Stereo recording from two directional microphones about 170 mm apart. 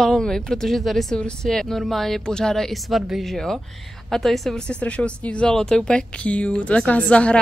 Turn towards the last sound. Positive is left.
turn(degrees=5)  # may be behind; listen again after turning